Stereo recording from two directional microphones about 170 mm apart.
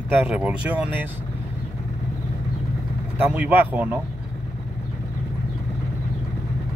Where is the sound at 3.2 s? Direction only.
10° right (ahead or behind).